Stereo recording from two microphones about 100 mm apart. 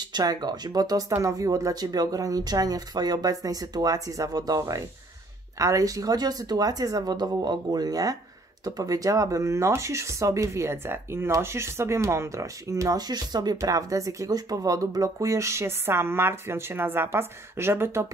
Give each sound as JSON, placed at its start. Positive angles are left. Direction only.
{"t": 0.0, "sound": "speech", "side_deg": -45}